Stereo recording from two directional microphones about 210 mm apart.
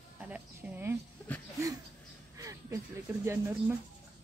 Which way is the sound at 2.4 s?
15° right (ahead or behind).